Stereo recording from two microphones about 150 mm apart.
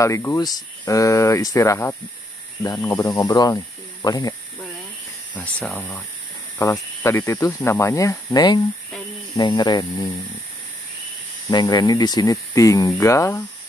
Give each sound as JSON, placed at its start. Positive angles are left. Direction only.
{"t": 0.0, "sound": "speech", "side_deg": 20}
{"t": 5.3, "sound": "speech", "side_deg": 5}
{"t": 6.6, "sound": "speech", "side_deg": 20}
{"t": 11.5, "sound": "speech", "side_deg": 30}